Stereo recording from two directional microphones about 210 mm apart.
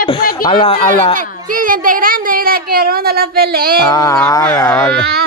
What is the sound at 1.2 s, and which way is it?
Speech, 40° right (ahead or behind).